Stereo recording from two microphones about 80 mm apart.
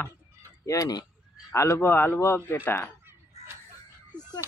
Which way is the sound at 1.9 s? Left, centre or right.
Left.